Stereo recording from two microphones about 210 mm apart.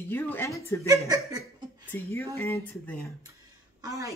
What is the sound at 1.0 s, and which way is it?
Speech, 15° right (ahead or behind).